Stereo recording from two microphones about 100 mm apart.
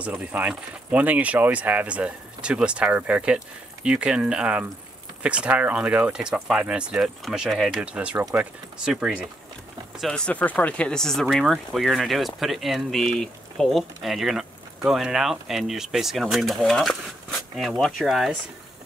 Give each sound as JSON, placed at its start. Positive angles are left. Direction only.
{"t": 0.0, "sound": "speech", "side_deg": -15}